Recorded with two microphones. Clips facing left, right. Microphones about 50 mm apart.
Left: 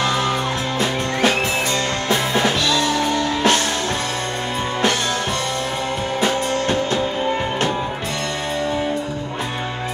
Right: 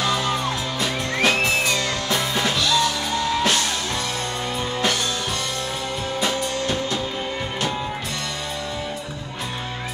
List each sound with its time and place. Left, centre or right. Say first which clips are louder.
0.0 s music: left 3 dB; left
6.2 s music: left 5 dB; left